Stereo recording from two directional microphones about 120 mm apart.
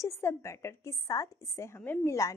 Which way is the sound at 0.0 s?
25° left (ahead or behind).